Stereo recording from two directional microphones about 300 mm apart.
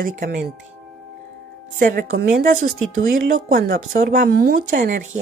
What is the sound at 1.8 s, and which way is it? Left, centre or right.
A woman's voice, right.